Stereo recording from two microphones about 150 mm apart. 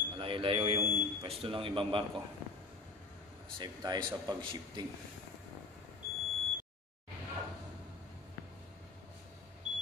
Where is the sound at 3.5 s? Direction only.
30° right (ahead or behind).